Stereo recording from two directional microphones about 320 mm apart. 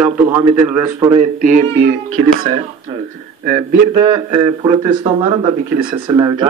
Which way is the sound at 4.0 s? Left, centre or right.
Centre.